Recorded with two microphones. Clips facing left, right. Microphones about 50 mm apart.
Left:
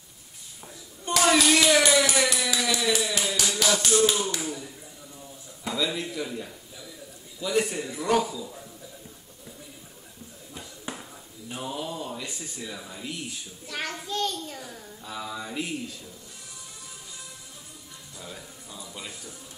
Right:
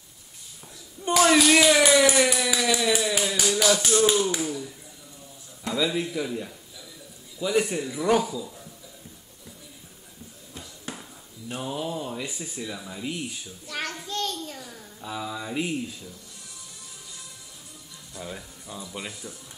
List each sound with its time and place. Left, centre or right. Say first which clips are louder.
1.1 s a child's voice: right 3 dB; centre
2.6 s a sound: right 2 dB; centre
3.6 s a child's voice: right 1 dB; centre
5.8 s a child's voice: right 3 dB; centre
10.5 s a sound: left 1 dB; centre
11.5 s speech: right 2 dB; centre
13.7 s a child's voice: even; centre
15.5 s speech: right 6 dB; centre
18.1 s a sound: right 5 dB; centre